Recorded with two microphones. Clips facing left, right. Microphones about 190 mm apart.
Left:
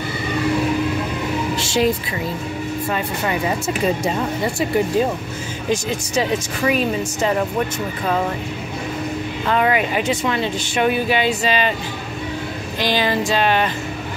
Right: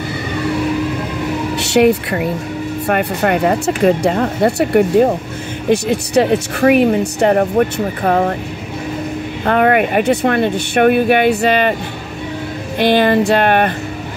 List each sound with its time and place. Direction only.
1.6 s speech: 65° right (ahead or behind)
9.4 s speech: 55° right (ahead or behind)
12.7 s speech: 60° right (ahead or behind)